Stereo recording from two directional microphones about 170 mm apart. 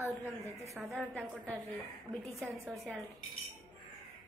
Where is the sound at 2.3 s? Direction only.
15° right (ahead or behind).